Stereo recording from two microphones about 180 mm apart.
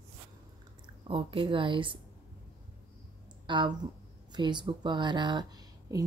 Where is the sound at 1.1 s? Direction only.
30° right (ahead or behind).